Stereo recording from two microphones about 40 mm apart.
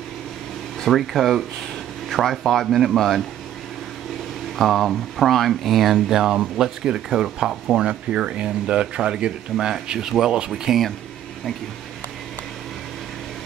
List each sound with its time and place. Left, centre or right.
0.8 s speech: centre
4.6 s speech: centre
6.0 s speech: centre
7.8 s speech: right